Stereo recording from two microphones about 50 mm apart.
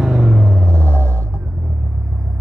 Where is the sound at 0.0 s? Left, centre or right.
Centre.